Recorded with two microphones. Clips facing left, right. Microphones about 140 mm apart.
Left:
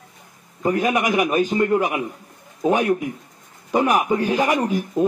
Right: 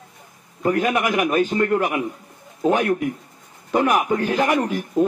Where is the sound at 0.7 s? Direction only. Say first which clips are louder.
Even; 15° left (ahead or behind).